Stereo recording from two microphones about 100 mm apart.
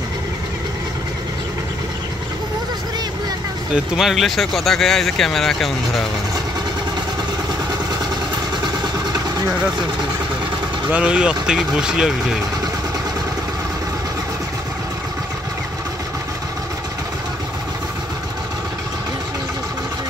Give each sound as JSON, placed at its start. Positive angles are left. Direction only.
{"t": 3.7, "sound": "speech", "side_deg": -5}
{"t": 10.9, "sound": "speech", "side_deg": -10}